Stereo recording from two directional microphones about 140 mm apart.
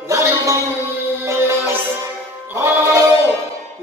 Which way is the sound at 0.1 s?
20° right (ahead or behind).